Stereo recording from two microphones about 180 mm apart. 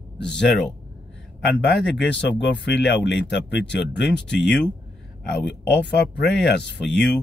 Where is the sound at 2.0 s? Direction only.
75° left (ahead or behind).